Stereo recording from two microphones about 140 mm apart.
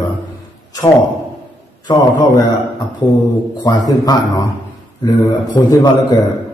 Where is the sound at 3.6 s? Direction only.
30° left (ahead or behind).